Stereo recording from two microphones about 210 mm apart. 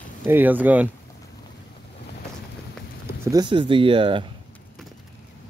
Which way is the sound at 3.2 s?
20° right (ahead or behind).